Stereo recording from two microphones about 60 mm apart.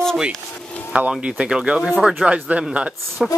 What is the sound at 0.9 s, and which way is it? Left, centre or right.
Speech, centre.